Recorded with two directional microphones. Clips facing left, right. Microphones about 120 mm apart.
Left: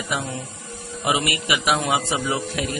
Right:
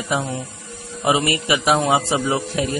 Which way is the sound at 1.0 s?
35° right (ahead or behind).